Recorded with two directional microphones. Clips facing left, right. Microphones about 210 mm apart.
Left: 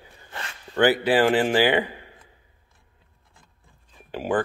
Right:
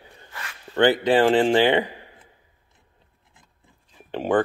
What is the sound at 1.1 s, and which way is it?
Speech, 25° right (ahead or behind).